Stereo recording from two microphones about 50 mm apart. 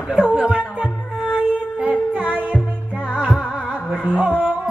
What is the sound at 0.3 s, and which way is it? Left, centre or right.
Music, right.